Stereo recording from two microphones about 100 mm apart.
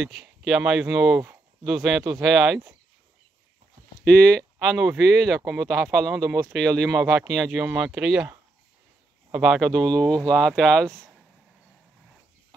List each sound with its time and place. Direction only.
0.0 s speech: 5° right (ahead or behind)
4.0 s speech: 10° left (ahead or behind)
4.6 s speech: centre (ahead or behind)
5.4 s speech: 30° right (ahead or behind)
5.7 s speech: 5° left (ahead or behind)
6.2 s speech: 30° right (ahead or behind)
6.5 s speech: 5° left (ahead or behind)
9.3 s speech: 5° right (ahead or behind)